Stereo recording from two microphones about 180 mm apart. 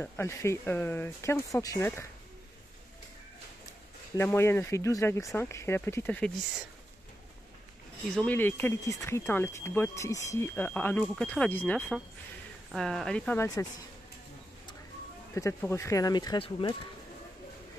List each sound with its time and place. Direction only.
0.0 s speech: 15° left (ahead or behind)
4.2 s speech: 15° left (ahead or behind)
8.2 s speech: 10° left (ahead or behind)
15.3 s speech: 15° left (ahead or behind)